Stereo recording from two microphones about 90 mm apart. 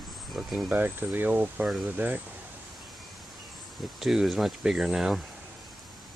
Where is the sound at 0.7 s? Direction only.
20° right (ahead or behind).